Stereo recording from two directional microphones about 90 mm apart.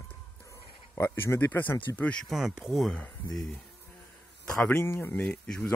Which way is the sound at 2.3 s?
5° right (ahead or behind).